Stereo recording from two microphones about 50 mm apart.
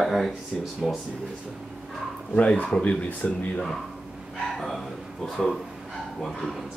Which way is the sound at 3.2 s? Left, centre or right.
Left.